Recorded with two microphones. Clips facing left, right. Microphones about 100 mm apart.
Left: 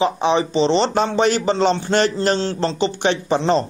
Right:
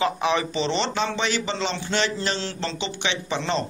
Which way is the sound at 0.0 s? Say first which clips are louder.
Left 5 dB; 30° left (ahead or behind).